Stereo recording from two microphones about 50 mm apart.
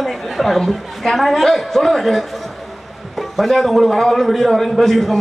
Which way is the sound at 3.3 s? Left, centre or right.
Centre.